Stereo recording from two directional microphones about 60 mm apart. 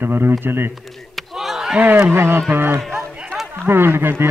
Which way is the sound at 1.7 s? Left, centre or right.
Centre.